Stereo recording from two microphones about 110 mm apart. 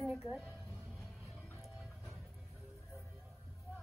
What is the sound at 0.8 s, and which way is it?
Music, centre (ahead or behind).